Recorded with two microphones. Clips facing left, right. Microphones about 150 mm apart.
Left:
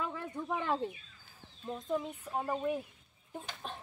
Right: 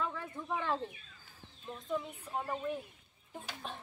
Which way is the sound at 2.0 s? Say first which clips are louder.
Left 2 dB; 20° left (ahead or behind).